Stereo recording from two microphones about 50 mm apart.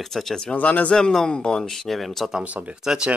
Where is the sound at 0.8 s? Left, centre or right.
Centre.